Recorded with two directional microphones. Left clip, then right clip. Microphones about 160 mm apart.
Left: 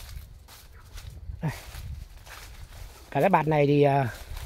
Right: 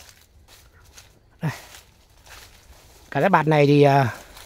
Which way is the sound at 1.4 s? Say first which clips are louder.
Right 5 dB; 25° right (ahead or behind).